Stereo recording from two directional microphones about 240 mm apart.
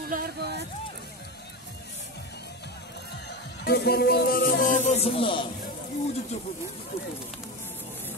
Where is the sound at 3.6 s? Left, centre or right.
Left.